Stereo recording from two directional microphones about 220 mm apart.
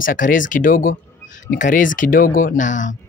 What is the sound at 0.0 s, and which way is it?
Speech, 40° left (ahead or behind).